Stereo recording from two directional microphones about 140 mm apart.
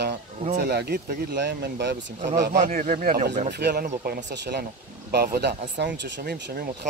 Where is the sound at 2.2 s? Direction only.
65° right (ahead or behind); by 4.2 s 90° right.